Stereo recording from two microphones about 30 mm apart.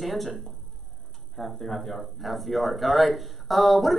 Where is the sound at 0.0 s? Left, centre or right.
Centre.